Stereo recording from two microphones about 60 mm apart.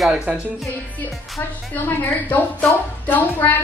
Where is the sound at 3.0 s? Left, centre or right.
Left.